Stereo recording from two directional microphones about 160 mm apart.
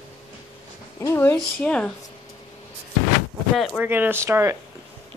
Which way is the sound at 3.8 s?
10° right (ahead or behind).